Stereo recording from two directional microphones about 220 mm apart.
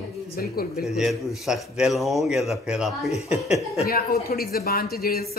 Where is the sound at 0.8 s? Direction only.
Centre (ahead or behind).